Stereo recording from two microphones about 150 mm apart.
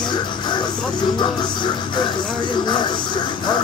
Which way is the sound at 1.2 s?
30° left (ahead or behind).